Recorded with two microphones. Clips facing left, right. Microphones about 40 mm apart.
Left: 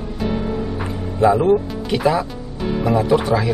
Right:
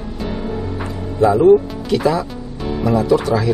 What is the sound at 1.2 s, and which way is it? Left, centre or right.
Speech, left.